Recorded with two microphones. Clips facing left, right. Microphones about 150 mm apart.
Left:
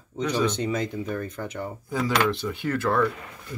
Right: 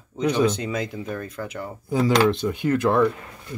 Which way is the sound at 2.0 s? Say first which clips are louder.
Right 5 dB; 35° right (ahead or behind).